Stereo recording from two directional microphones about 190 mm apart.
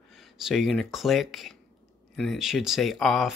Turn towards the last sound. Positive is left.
turn(degrees=0)  # may be behind; listen again after turning